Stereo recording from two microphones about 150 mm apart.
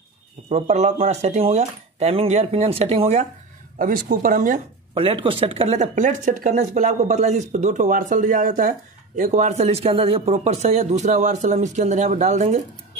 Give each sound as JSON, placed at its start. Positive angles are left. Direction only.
{"t": 0.5, "sound": "speech", "side_deg": -45}
{"t": 3.7, "sound": "speech", "side_deg": -65}
{"t": 4.9, "sound": "speech", "side_deg": -40}
{"t": 5.8, "sound": "speech", "side_deg": -55}